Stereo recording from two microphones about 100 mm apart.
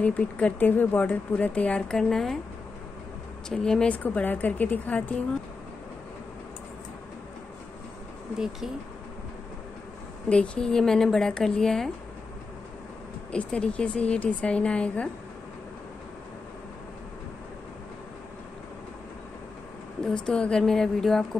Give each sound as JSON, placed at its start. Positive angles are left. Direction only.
{"t": 0.0, "sound": "speech", "side_deg": 15}
{"t": 3.4, "sound": "speech", "side_deg": 5}
{"t": 8.4, "sound": "a woman's voice", "side_deg": 0}
{"t": 10.3, "sound": "a woman's voice", "side_deg": 10}
{"t": 13.3, "sound": "speech", "side_deg": 10}
{"t": 20.2, "sound": "a woman's voice", "side_deg": 10}